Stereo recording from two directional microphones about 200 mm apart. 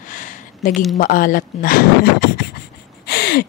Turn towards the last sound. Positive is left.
turn(degrees=50)  # may be behind; listen again after turning